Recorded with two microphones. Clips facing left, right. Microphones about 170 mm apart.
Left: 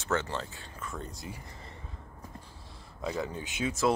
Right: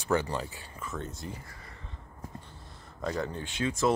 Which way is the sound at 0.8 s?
Centre (ahead or behind).